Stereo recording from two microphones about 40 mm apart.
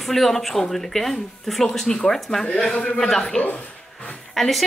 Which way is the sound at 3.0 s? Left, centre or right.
Centre.